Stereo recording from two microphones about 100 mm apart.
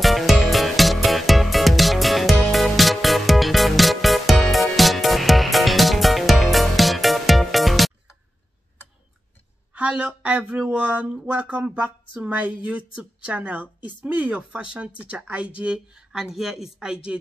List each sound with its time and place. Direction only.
0.0 s music: centre (ahead or behind)
9.8 s speech: 10° right (ahead or behind)